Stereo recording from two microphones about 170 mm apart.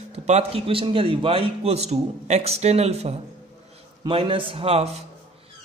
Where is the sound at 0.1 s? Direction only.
35° right (ahead or behind).